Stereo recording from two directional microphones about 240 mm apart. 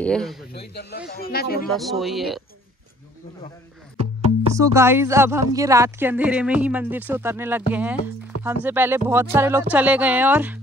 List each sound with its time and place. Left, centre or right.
0.0 s speech: centre
0.5 s speech: left
1.8 s speech: centre
4.6 s speech: centre